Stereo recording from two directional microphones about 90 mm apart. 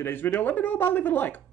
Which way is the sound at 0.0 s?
25° left (ahead or behind).